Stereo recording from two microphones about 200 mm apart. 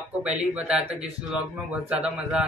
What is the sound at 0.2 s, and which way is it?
A man's voice, 5° right (ahead or behind).